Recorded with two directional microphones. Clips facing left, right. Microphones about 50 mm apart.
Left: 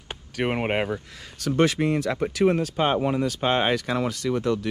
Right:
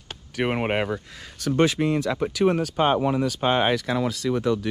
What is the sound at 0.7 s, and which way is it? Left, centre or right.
Speech, right.